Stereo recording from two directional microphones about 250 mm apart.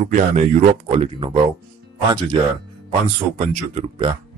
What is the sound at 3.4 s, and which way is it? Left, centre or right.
Speech, right.